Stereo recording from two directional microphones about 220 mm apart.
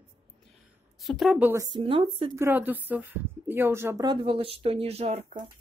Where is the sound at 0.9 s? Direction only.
Centre (ahead or behind); by 2.3 s 25° right (ahead or behind).